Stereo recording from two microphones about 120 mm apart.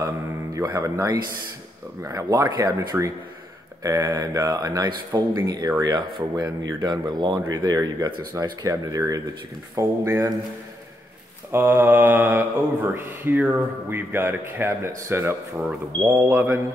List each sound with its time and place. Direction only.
0.6 s speech: 30° right (ahead or behind)
11.5 s speech: 20° right (ahead or behind)